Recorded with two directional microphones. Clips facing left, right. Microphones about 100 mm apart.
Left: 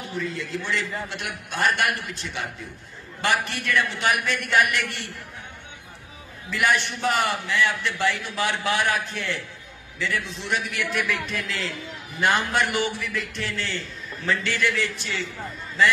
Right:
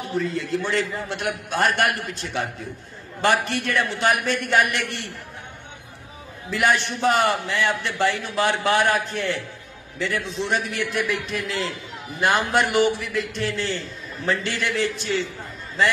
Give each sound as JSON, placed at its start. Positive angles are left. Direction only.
{"t": 0.2, "sound": "a man's voice", "side_deg": -40}
{"t": 6.5, "sound": "a man's voice", "side_deg": -35}